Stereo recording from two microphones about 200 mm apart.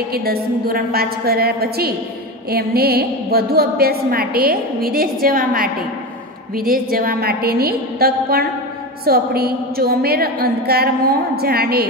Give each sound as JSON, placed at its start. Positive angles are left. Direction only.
{"t": 0.1, "sound": "a woman's voice", "side_deg": -50}